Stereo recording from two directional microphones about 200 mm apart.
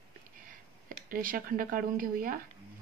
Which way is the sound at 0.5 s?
45° right (ahead or behind).